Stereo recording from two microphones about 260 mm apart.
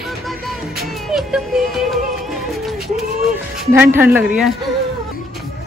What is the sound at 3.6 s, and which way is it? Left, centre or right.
Speech, centre.